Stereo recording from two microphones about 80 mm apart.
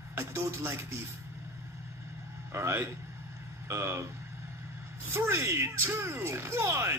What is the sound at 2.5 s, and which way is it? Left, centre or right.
Speech, right.